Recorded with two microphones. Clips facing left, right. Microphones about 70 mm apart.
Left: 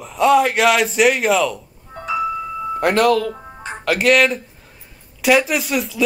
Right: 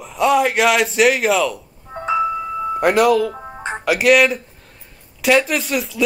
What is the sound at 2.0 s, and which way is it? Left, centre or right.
Music, right.